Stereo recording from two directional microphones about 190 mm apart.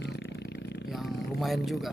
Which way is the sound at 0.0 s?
65° left (ahead or behind).